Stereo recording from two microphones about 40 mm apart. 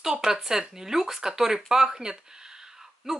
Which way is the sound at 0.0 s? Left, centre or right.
Centre.